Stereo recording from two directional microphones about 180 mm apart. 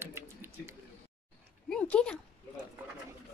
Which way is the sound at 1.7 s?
5° left (ahead or behind).